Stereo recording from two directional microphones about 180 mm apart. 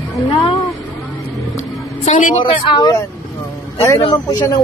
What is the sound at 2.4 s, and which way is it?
Speech, 25° left (ahead or behind).